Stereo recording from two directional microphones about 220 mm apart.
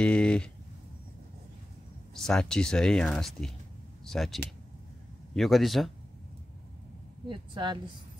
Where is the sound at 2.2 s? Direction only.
5° left (ahead or behind).